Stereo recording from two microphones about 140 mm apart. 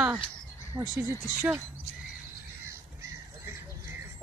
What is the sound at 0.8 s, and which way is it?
Speech, 20° right (ahead or behind).